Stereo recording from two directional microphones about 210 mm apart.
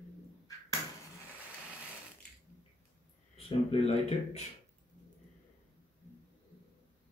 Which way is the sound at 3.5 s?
30° left (ahead or behind).